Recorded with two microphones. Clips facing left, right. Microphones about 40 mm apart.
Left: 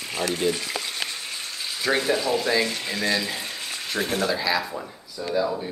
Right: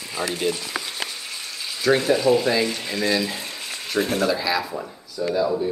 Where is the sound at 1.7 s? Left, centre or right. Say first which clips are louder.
Right 4 dB; centre.